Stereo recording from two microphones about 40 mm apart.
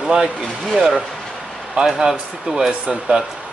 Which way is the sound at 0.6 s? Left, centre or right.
Centre.